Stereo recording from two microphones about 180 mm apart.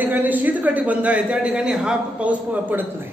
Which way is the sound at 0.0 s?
10° right (ahead or behind).